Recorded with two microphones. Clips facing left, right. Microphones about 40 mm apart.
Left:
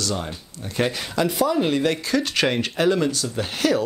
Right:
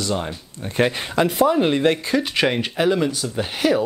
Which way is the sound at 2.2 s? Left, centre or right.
Centre.